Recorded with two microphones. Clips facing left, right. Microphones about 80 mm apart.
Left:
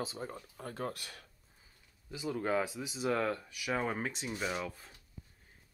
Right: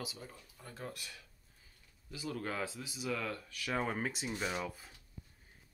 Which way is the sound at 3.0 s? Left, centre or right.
Left.